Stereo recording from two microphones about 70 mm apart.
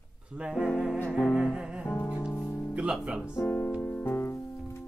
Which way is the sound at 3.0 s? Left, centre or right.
Centre.